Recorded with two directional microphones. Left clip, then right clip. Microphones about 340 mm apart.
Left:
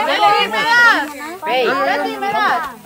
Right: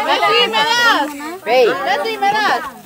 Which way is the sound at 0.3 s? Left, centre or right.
Right.